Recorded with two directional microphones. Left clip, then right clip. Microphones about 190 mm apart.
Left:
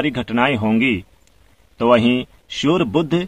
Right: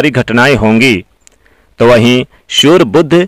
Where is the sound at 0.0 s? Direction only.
50° right (ahead or behind).